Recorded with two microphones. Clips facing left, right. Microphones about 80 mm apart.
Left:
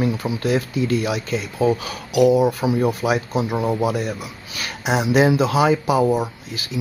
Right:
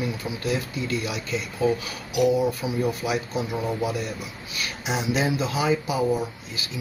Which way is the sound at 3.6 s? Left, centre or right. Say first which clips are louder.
Left 6 dB; left.